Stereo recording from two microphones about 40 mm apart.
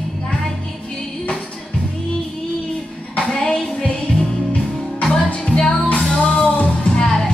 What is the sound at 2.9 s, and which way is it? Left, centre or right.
Clapping, left.